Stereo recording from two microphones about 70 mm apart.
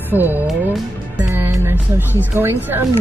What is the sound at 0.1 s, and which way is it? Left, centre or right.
Speech, right.